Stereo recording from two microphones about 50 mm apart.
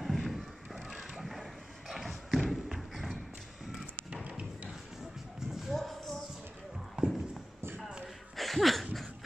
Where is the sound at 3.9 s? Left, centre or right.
Right.